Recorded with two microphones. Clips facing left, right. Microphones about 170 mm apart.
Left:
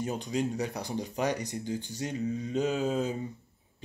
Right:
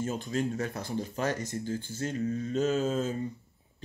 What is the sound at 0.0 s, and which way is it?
Speech, 15° left (ahead or behind).